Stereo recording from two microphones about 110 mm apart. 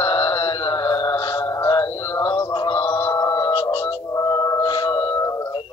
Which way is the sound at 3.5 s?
25° left (ahead or behind).